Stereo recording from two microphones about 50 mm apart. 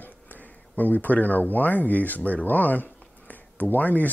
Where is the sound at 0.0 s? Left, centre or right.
Left.